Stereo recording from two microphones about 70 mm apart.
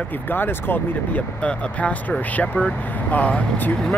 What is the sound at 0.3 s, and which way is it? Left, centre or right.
Speech, left.